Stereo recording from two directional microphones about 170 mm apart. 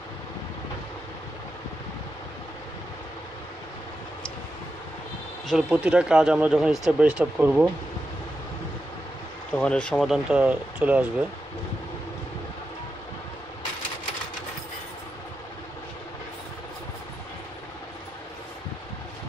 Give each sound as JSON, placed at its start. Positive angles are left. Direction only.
{"t": 5.5, "sound": "speech", "side_deg": -5}
{"t": 9.5, "sound": "speech", "side_deg": 5}